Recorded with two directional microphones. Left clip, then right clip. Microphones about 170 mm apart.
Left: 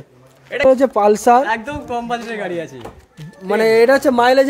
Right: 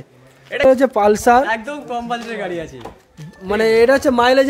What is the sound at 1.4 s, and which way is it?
A man's voice, 10° left (ahead or behind).